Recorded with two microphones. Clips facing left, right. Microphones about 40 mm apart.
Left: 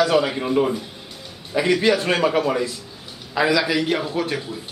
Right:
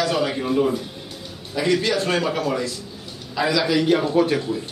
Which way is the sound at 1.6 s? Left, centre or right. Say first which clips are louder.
Left 2 dB; left.